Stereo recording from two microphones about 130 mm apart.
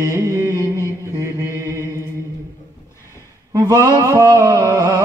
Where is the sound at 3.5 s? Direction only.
25° right (ahead or behind).